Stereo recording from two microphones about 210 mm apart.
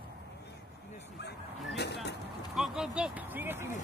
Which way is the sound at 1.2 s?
50° left (ahead or behind).